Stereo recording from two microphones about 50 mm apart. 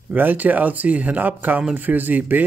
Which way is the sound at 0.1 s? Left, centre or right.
Right.